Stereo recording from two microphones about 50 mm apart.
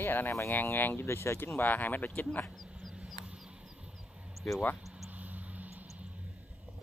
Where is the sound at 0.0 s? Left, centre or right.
Left.